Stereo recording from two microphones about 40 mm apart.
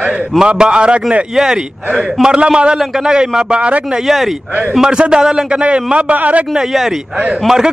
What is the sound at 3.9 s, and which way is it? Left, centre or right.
Speech, centre.